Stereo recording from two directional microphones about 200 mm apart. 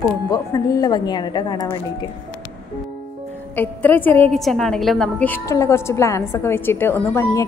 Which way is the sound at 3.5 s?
10° left (ahead or behind).